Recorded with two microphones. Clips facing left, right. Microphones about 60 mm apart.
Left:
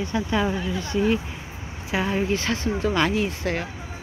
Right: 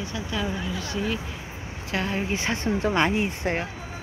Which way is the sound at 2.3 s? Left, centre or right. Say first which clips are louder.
Left 1 dB; right.